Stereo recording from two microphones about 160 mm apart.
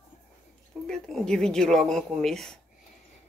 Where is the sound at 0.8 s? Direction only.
5° left (ahead or behind).